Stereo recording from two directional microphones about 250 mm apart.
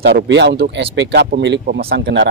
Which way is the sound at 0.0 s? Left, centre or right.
Right.